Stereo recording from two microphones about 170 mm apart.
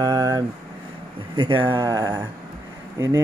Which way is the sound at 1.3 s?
30° right (ahead or behind).